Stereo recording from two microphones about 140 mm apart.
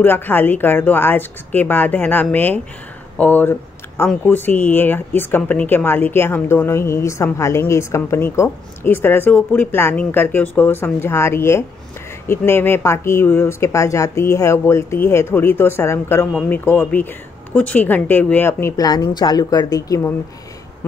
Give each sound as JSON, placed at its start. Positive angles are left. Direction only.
{"t": 0.0, "sound": "speech", "side_deg": 15}